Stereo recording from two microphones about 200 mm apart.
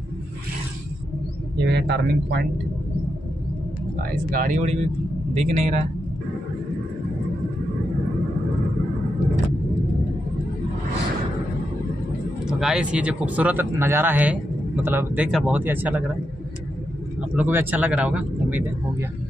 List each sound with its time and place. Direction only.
1.7 s speech: 60° right (ahead or behind)
4.1 s speech: 45° right (ahead or behind)
12.4 s a man's voice: 5° right (ahead or behind)
17.4 s a man's voice: 10° right (ahead or behind)